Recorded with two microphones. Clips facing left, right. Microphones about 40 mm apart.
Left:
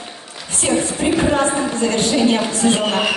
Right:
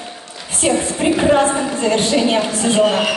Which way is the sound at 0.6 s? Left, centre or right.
Centre.